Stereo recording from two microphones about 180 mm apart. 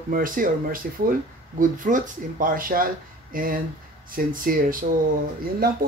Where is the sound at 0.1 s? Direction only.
50° right (ahead or behind).